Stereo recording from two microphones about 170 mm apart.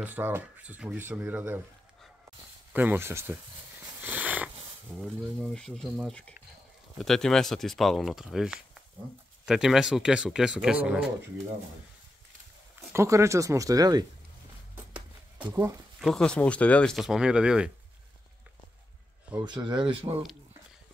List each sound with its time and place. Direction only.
0.0 s speech: 10° right (ahead or behind)
2.7 s speech: 10° right (ahead or behind)
3.8 s purr: 10° right (ahead or behind)
4.9 s speech: centre (ahead or behind)
12.9 s speech: 15° right (ahead or behind)
15.5 s speech: 15° right (ahead or behind)
16.0 s speech: centre (ahead or behind)
19.4 s speech: 25° right (ahead or behind)